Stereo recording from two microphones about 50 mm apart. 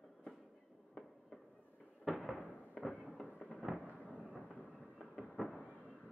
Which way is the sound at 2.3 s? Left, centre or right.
Left.